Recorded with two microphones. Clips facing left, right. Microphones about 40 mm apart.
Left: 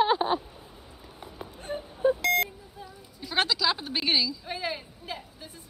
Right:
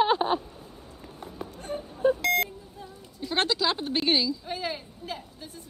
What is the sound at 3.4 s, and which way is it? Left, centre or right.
Speech, right.